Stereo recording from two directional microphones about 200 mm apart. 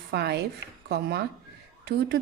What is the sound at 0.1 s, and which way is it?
A woman's voice, 55° right (ahead or behind).